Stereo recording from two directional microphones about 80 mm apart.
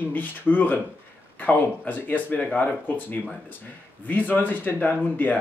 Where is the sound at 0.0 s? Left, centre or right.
Left.